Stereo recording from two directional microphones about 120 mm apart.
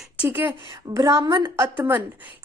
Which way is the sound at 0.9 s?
30° right (ahead or behind).